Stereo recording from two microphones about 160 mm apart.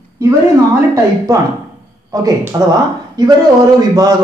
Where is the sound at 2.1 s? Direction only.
20° right (ahead or behind).